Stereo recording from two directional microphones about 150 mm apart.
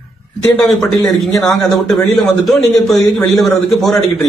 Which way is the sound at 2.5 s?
Centre (ahead or behind).